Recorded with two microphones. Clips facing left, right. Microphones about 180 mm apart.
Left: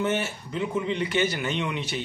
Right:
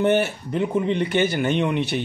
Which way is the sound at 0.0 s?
60° right (ahead or behind).